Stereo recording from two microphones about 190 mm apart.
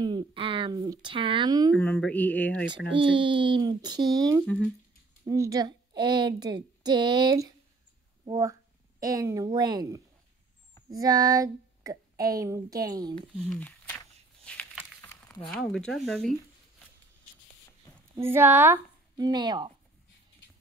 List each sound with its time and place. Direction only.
0.0 s a woman's voice: 25° right (ahead or behind)
1.8 s speech: 10° left (ahead or behind)
2.9 s a woman's voice: 25° right (ahead or behind)
5.2 s a woman's voice: 15° right (ahead or behind)
13.5 s a sound: 5° left (ahead or behind)
15.4 s speech: 5° left (ahead or behind)
18.1 s speech: 10° right (ahead or behind)